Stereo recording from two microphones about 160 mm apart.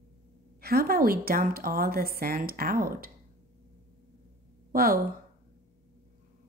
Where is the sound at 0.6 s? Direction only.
70° right (ahead or behind).